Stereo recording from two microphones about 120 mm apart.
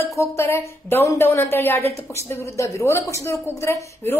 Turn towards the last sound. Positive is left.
turn(degrees=20)  # may be behind; listen again after turning